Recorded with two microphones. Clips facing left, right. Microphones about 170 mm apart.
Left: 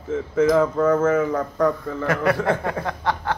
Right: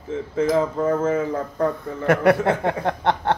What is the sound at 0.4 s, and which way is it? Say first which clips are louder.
Speech: left 3 dB; 25° right (ahead or behind).